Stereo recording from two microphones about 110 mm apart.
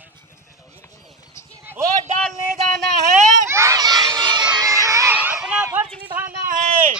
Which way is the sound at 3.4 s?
25° right (ahead or behind).